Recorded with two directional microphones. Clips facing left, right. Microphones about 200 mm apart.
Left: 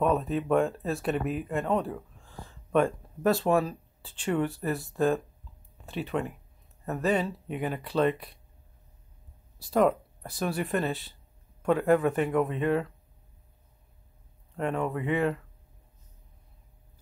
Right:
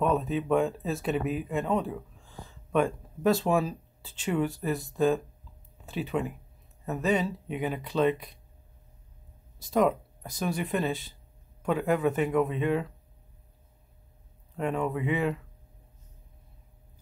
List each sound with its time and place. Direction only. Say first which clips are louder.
0.0 s speech: left 1 dB; centre (ahead or behind)
9.6 s speech: left 1 dB; 5° left (ahead or behind)
14.6 s speech: even; centre (ahead or behind)